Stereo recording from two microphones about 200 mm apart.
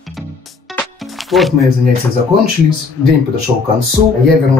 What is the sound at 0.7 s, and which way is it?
Music, centre (ahead or behind).